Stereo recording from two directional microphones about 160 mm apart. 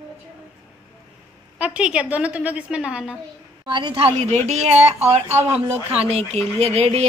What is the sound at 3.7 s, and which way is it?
A woman's voice, 30° right (ahead or behind).